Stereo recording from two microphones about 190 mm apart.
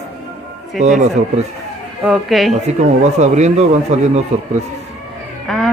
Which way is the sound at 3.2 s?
40° right (ahead or behind).